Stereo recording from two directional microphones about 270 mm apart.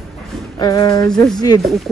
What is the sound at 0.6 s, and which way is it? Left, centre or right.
Speech, centre.